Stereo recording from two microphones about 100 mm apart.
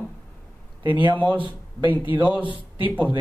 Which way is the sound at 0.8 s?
55° left (ahead or behind).